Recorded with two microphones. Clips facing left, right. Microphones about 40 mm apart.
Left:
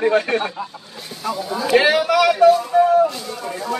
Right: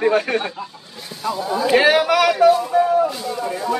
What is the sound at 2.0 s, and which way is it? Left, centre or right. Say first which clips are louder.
Speech: even; right.